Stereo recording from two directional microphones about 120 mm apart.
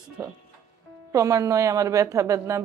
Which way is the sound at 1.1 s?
25° right (ahead or behind).